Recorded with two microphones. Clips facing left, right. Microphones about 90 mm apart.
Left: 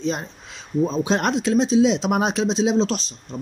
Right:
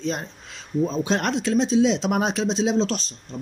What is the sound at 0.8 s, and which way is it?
A man's voice, 20° left (ahead or behind).